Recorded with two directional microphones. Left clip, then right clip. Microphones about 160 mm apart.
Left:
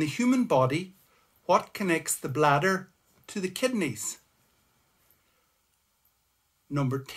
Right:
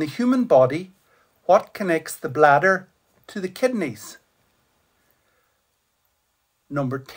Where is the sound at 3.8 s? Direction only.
40° left (ahead or behind).